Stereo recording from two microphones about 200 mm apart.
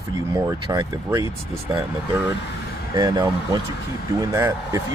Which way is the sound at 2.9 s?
20° right (ahead or behind).